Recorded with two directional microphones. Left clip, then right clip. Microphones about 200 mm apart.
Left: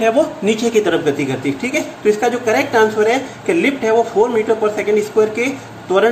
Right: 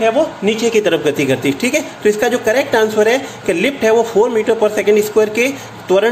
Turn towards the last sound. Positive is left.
turn(degrees=-35)  # may be behind; listen again after turning